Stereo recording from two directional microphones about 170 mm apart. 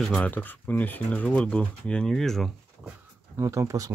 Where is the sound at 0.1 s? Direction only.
10° left (ahead or behind).